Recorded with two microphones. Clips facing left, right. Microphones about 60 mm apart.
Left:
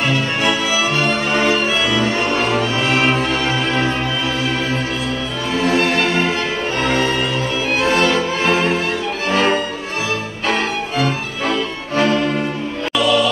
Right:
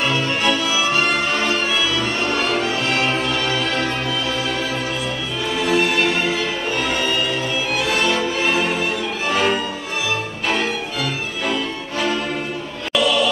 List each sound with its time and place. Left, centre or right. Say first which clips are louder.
1.0 s music: left 3 dB; left
5.6 s music: left 2 dB; left
12.9 s music: left 2 dB; centre